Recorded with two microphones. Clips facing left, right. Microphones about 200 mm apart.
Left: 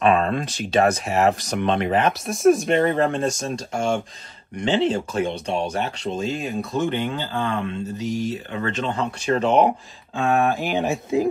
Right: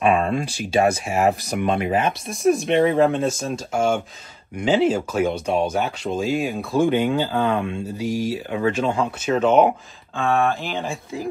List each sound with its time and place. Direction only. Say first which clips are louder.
0.0 s speech: even; 10° right (ahead or behind)
10.8 s speech: left 7 dB; 20° left (ahead or behind)